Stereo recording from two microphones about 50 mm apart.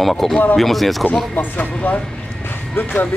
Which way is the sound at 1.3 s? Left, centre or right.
Left.